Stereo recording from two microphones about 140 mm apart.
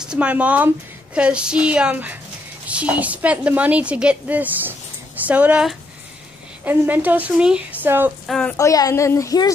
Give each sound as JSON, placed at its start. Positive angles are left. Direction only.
{"t": 0.0, "sound": "a woman's voice", "side_deg": -5}
{"t": 8.3, "sound": "a woman's voice", "side_deg": 5}
{"t": 8.5, "sound": "a woman's voice", "side_deg": 25}